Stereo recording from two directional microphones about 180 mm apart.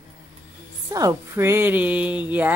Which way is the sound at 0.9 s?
20° right (ahead or behind).